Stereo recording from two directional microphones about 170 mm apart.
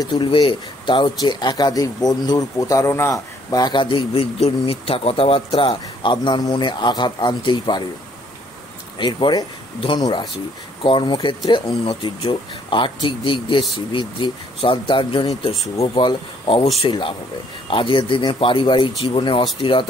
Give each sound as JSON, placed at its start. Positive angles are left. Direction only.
{"t": 0.0, "sound": "speech", "side_deg": 25}
{"t": 8.9, "sound": "speech", "side_deg": 25}